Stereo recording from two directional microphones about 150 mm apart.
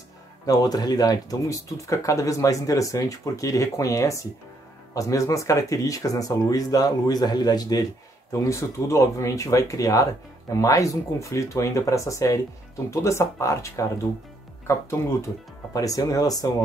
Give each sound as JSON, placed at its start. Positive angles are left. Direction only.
{"t": 0.5, "sound": "speech", "side_deg": 25}
{"t": 15.7, "sound": "speech", "side_deg": 25}